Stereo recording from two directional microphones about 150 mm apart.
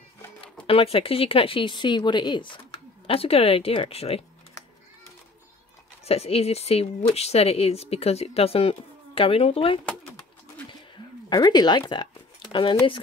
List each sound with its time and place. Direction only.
0.7 s speech: 40° left (ahead or behind)
6.0 s speech: 40° left (ahead or behind)
11.2 s speech: 30° left (ahead or behind)
11.9 s a sound: 30° left (ahead or behind)